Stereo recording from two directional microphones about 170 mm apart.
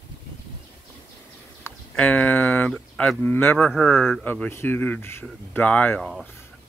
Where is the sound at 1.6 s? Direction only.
10° left (ahead or behind).